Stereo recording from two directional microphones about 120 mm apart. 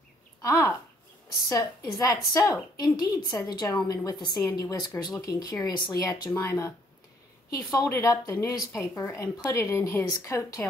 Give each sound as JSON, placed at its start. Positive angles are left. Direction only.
{"t": 0.4, "sound": "a woman's voice", "side_deg": 25}